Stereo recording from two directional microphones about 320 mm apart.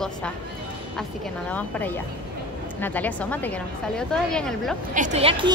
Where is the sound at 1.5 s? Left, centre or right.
Centre.